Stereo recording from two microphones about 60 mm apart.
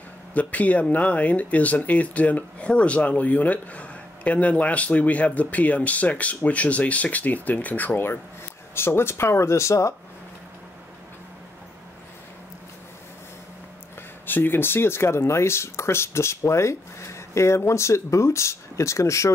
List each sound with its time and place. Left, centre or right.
0.3 s speech: left
14.2 s speech: left